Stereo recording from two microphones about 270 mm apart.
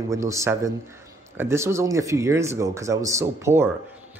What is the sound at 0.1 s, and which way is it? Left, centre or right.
Speech, centre.